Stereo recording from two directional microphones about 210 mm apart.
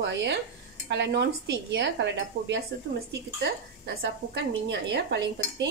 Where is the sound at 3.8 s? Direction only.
50° right (ahead or behind).